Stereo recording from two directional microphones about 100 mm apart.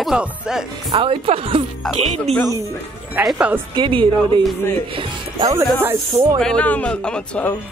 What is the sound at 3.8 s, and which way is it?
Speech, 55° right (ahead or behind).